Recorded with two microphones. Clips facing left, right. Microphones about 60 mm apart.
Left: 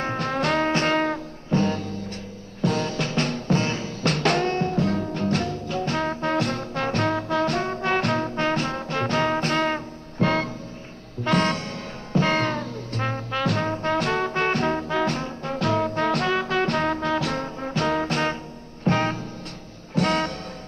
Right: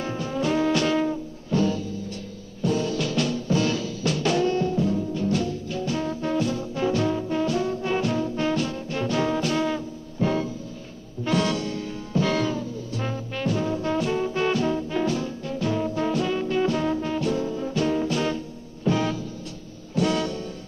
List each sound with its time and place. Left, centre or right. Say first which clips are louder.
0.0 s music: left 2 dB; left
0.7 s brass instrument: even; left
1.5 s music: even; left
2.9 s music: right 1 dB; left
3.6 s music: right 2 dB; left
4.0 s music: left 1 dB; left
11.2 s music: left 1 dB; left
13.3 s brass instrument: left 1 dB; left
13.7 s brass instrument: left 1 dB; left
14.9 s brass instrument: left 1 dB; left
15.1 s music: left 1 dB; left
15.9 s brass instrument: left 2 dB; left
17.4 s music: right 2 dB; left
17.7 s music: left 1 dB; left